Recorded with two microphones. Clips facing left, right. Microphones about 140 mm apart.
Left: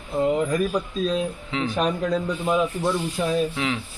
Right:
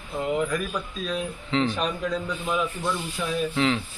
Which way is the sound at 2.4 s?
35° left (ahead or behind).